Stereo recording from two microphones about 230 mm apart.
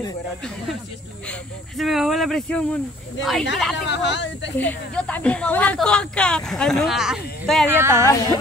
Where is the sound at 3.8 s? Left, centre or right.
Left.